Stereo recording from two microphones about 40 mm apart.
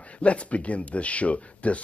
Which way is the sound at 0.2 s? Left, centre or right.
Left.